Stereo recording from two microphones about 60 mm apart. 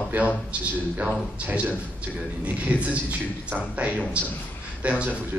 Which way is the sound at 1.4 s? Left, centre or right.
Right.